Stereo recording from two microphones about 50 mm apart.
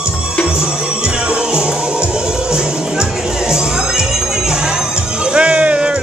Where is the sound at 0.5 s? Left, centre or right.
Centre.